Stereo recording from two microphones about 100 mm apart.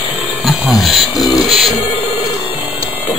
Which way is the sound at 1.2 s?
40° left (ahead or behind).